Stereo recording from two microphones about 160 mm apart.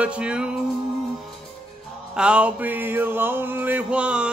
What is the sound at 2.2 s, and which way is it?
Mantra, 5° right (ahead or behind).